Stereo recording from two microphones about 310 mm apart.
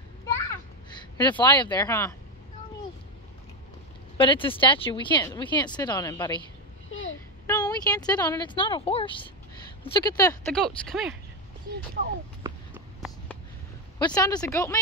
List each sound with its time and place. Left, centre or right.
0.8 s speech: centre
4.2 s speech: centre
6.9 s a sound: left
7.4 s speech: centre
12.4 s a sound: centre
13.9 s speech: centre